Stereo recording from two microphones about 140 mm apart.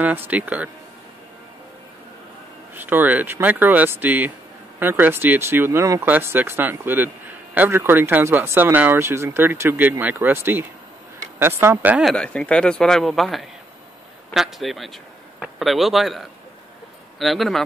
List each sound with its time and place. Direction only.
0.0 s speech: 15° right (ahead or behind)
2.7 s speech: 15° right (ahead or behind)
12.0 s speech: 5° left (ahead or behind)